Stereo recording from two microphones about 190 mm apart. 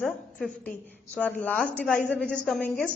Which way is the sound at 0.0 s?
5° left (ahead or behind).